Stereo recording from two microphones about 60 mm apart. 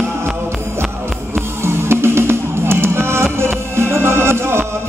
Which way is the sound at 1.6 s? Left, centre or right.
Right.